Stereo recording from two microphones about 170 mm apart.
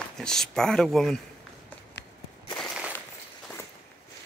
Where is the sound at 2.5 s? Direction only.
Centre (ahead or behind).